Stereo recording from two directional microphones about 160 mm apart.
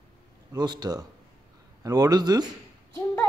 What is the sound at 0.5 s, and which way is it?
A man's voice, 25° right (ahead or behind).